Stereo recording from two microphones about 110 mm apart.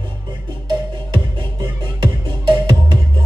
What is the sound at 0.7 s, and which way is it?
Music, 45° right (ahead or behind).